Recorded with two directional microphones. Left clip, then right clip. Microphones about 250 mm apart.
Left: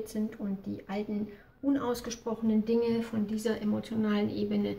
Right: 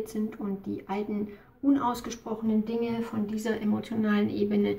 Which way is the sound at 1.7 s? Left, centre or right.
Centre.